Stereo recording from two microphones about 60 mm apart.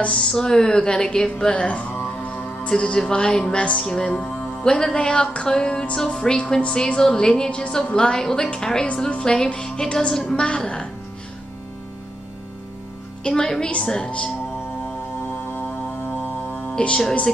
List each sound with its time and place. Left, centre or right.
0.1 s speech: centre
2.2 s music: left
2.7 s speech: centre
13.2 s speech: centre
16.1 s music: left
16.7 s speech: centre